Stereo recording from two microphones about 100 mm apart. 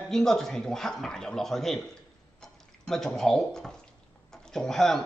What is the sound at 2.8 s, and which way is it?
A man's voice, 5° left (ahead or behind).